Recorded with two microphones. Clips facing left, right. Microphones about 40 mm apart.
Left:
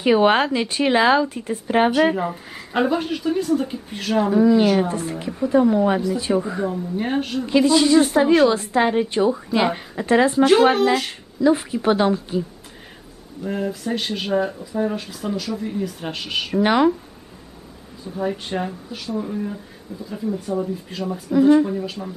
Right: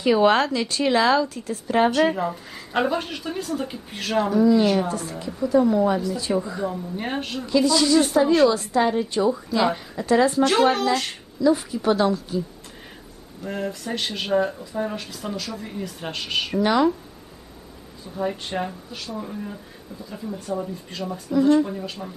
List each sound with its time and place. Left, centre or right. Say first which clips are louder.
0.0 s speech: left 2 dB; left
2.7 s speech: left 3 dB; centre
4.3 s a woman's voice: left 2 dB; left
6.3 s speech: left 3 dB; centre
6.7 s speech: left 5 dB; centre
7.4 s a woman's voice: left 3 dB; left
10.4 s speech: left 4 dB; centre
11.5 s a woman's voice: left 2 dB; left
13.4 s speech: left 4 dB; centre
16.5 s speech: left 3 dB; left
18.1 s speech: left 2 dB; centre
21.6 s speech: left 5 dB; centre